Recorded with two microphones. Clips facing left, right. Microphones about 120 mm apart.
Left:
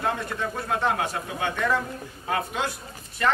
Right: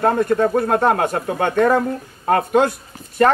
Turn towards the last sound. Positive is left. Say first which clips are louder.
# right 9 dB
turn(degrees=-50)  # may be behind; listen again after turning